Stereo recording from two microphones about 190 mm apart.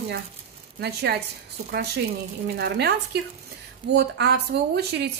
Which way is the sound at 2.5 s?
60° right (ahead or behind).